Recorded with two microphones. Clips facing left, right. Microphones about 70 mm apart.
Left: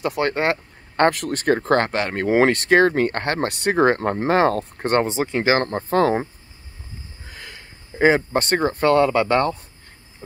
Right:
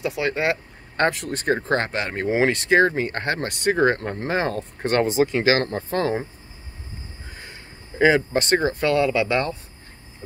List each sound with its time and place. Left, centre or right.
0.0 s speech: left
4.9 s speech: left
7.2 s a sound: left
8.0 s speech: left